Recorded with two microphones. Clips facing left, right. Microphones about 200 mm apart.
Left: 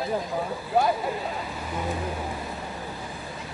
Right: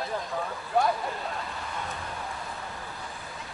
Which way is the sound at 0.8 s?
5° left (ahead or behind).